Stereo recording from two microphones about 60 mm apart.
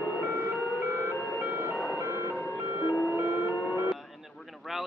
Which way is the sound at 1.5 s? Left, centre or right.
Right.